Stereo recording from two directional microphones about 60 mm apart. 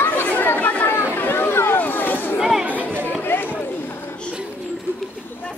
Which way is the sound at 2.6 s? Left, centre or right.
Right.